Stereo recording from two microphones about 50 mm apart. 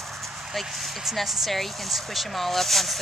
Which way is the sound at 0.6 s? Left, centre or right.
Centre.